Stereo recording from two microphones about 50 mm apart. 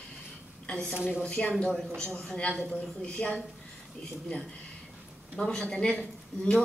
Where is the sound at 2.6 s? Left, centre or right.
Left.